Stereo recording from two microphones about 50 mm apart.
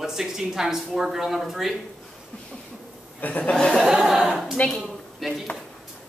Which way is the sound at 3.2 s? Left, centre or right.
Left.